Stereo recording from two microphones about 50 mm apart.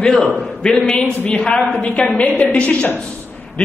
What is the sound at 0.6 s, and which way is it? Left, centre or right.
A man's voice, left.